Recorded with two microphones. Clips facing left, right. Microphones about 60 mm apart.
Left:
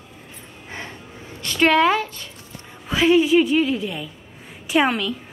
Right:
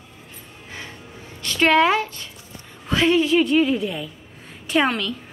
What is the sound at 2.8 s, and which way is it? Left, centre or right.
A woman's voice, centre.